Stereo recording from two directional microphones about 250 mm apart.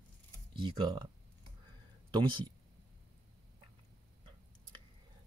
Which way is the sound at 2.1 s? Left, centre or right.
Centre.